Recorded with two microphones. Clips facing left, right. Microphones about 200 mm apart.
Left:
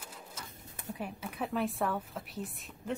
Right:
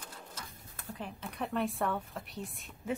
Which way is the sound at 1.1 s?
5° left (ahead or behind).